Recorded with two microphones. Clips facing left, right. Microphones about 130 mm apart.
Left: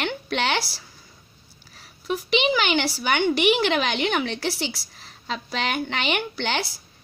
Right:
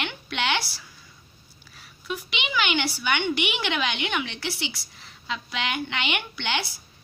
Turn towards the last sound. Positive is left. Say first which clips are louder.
# left 3 dB
turn(degrees=40)  # may be behind; listen again after turning